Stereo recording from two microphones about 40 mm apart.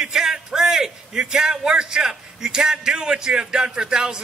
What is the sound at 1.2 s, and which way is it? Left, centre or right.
A man's voice, centre.